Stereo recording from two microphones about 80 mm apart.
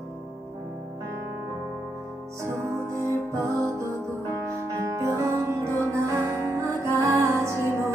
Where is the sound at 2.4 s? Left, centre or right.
Right.